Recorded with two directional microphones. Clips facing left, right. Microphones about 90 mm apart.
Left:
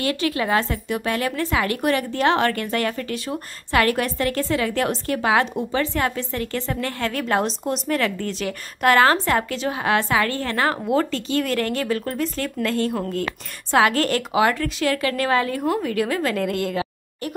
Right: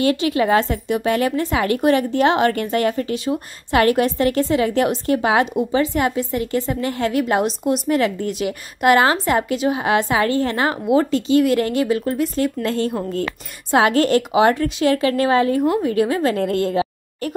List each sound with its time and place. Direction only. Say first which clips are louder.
0.0 s a woman's voice: right 5 dB; 25° right (ahead or behind)